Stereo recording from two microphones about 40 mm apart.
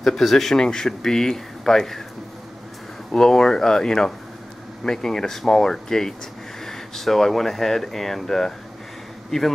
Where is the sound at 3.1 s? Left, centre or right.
Centre.